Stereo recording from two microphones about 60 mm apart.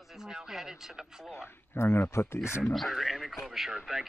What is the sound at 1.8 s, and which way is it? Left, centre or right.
Speech, left.